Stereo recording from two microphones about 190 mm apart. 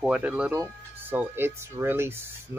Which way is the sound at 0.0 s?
5° right (ahead or behind).